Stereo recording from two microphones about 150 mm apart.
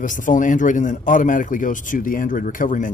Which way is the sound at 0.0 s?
60° left (ahead or behind).